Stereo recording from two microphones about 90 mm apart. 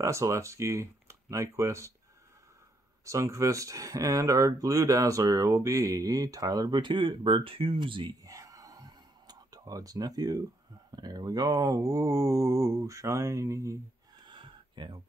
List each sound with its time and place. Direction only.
0.0 s speech: 35° right (ahead or behind)
3.1 s speech: 35° right (ahead or behind)
6.8 s speech: 65° right (ahead or behind)
8.2 s gasp: 40° right (ahead or behind)
11.0 s speech: 50° right (ahead or behind)
14.2 s a sound: 60° right (ahead or behind)